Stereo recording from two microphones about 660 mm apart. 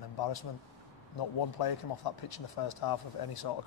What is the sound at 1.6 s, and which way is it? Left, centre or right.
Speech, left.